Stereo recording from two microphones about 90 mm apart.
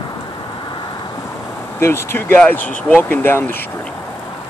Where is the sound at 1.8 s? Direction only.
25° left (ahead or behind).